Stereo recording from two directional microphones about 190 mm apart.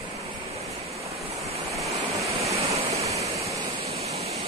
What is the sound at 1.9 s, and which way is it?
Waves, 30° right (ahead or behind).